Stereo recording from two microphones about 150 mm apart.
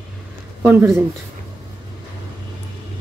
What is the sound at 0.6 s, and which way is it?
Speech, 20° right (ahead or behind).